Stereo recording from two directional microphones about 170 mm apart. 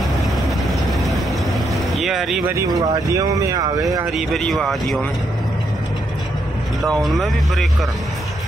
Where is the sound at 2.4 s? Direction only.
15° right (ahead or behind).